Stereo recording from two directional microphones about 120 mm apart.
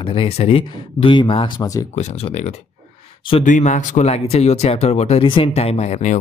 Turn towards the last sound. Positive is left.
turn(degrees=65)  # may be behind; listen again after turning